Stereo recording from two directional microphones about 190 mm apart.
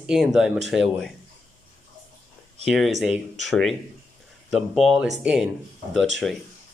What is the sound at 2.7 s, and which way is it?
Speech, centre (ahead or behind).